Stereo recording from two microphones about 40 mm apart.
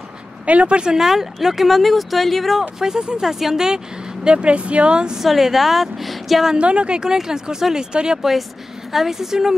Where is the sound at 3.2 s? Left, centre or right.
Centre; by 5.2 s right.